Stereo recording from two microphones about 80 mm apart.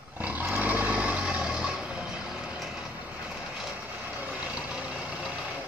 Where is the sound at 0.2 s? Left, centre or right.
Right.